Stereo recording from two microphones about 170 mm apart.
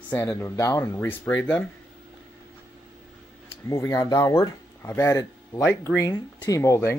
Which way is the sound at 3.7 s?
20° left (ahead or behind).